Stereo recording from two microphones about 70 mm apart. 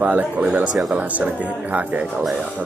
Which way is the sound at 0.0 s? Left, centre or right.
Right.